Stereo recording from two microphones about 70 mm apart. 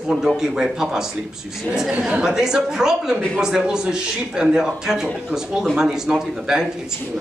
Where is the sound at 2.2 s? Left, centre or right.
Centre.